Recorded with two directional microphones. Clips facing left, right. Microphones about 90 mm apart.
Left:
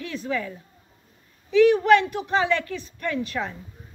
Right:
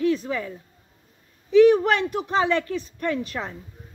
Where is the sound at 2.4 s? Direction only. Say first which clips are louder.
Right 1 dB; 30° right (ahead or behind).